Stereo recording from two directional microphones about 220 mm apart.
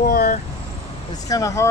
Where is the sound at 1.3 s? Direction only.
15° left (ahead or behind).